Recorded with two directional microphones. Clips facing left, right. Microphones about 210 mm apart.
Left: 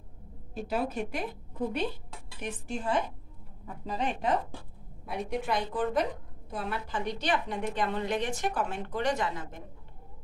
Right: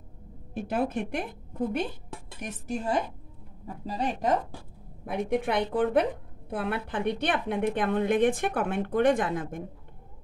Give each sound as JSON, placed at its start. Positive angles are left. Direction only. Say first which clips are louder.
{"t": 0.6, "sound": "a woman's voice", "louder": "right 3 dB", "side_deg": -55}
{"t": 5.0, "sound": "a woman's voice", "louder": "right 5 dB", "side_deg": -55}